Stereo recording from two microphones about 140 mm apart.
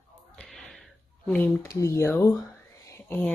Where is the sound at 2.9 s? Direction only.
15° left (ahead or behind).